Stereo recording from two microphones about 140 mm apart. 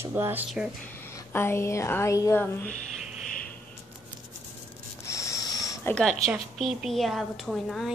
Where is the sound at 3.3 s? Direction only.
85° left.